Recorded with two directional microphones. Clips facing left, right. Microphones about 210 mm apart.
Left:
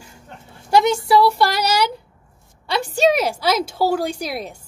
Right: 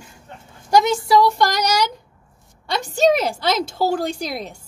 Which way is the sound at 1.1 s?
5° left (ahead or behind).